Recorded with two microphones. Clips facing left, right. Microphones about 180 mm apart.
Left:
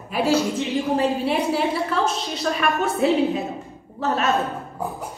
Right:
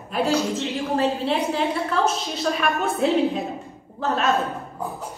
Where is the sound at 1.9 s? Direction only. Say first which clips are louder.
Even; centre (ahead or behind).